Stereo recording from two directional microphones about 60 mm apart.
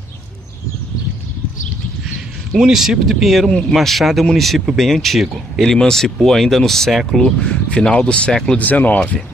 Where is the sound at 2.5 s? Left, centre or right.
Centre.